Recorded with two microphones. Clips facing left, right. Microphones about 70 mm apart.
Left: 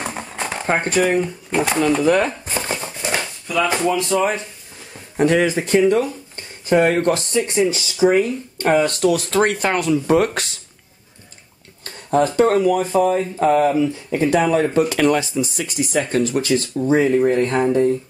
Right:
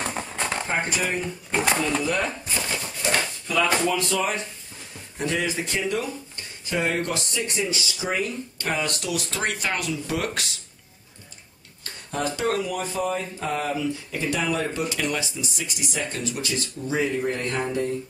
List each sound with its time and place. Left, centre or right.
0.0 s a sound: centre
0.7 s speech: left
1.5 s speech: centre
2.0 s chopping: left
3.4 s speech: centre
3.7 s speech: left
5.1 s speech: left
5.6 s speech: left
11.8 s speech: left
15.5 s speech: left
16.8 s speech: left